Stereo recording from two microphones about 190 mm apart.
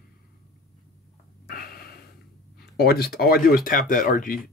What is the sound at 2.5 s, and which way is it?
Speech, 55° left (ahead or behind).